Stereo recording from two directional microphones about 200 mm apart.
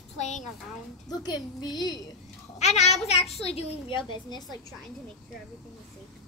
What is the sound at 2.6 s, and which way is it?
A child's voice, 35° left (ahead or behind).